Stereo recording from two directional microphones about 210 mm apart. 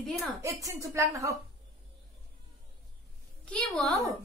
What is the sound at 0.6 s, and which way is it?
Speech, 15° right (ahead or behind).